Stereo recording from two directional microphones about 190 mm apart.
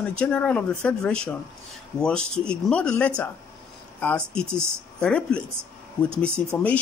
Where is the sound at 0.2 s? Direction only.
5° left (ahead or behind).